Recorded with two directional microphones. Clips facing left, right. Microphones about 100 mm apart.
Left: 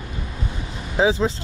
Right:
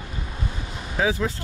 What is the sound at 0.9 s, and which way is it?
Speech, 25° left (ahead or behind).